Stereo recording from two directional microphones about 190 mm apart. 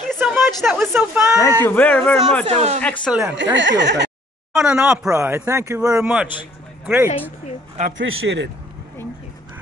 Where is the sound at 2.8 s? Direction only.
5° left (ahead or behind).